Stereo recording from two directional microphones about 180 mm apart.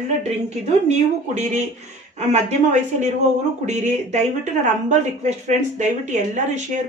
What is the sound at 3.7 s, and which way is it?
Speech, 40° right (ahead or behind).